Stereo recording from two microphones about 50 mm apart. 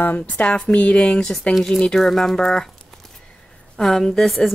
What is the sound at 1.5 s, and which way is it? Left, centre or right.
Speech, centre.